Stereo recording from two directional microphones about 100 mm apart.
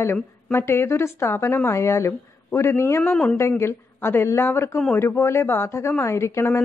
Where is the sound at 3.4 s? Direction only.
25° left (ahead or behind).